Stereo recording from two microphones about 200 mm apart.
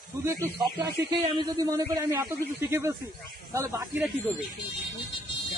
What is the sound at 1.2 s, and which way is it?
Speech, 20° right (ahead or behind).